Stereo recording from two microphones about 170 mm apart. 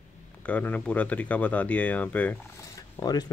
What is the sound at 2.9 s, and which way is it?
Speech, 25° left (ahead or behind).